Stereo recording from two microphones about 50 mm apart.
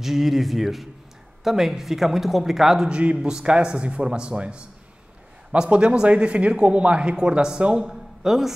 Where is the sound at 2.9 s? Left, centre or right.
Right.